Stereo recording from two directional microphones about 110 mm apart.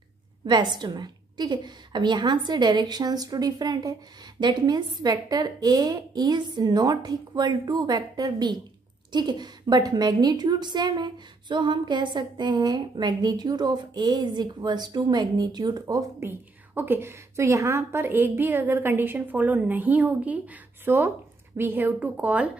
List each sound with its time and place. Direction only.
0.5 s a woman's voice: 40° right (ahead or behind)
16.2 s a woman's voice: 20° right (ahead or behind)